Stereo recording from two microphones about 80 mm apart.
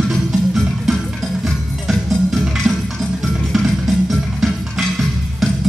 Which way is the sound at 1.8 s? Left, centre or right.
Centre.